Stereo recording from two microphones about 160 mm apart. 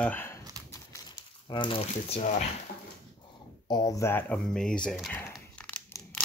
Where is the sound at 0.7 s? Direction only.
20° left (ahead or behind); by 2.3 s 40° left (ahead or behind).